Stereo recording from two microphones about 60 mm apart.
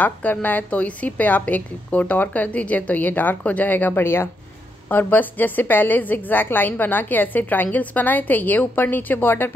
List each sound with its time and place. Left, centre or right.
0.0 s a woman's voice: left
4.8 s a woman's voice: left